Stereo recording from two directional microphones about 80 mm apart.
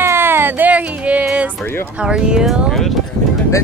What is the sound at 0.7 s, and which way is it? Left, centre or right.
Music, centre.